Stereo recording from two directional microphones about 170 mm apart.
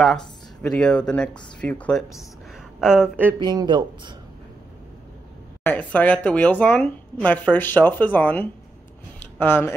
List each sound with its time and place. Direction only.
0.6 s speech: 5° left (ahead or behind)
2.8 s speech: 5° right (ahead or behind)
3.3 s speech: 25° right (ahead or behind)
5.6 s speech: 10° left (ahead or behind)